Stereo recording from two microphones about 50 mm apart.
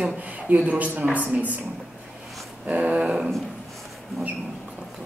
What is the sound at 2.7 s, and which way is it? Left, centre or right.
Speech, right.